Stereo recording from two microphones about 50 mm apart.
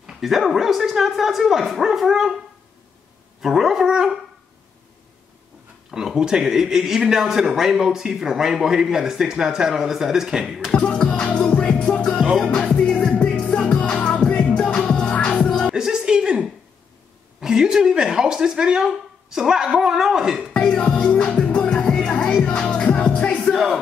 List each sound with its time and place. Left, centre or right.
0.2 s speech: centre
3.4 s speech: centre
5.9 s speech: centre
10.7 s music: centre
11.8 s music: centre
15.0 s music: left
15.3 s music: centre
15.7 s music: centre
17.4 s speech: centre
20.6 s music: left
21.6 s music: centre
23.4 s music: centre